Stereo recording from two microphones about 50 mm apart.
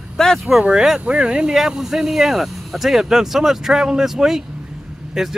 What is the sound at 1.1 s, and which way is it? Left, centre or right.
Speech, centre.